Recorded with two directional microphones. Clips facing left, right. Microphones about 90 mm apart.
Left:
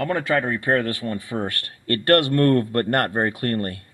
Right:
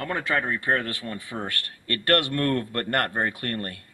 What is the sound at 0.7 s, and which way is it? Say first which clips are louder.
Speech: left 5 dB; 30° left (ahead or behind).